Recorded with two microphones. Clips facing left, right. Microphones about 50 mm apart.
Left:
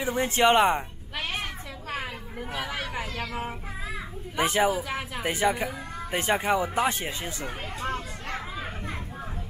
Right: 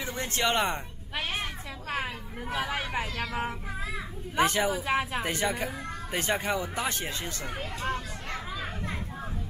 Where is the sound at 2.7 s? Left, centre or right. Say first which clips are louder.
Right 1 dB; centre.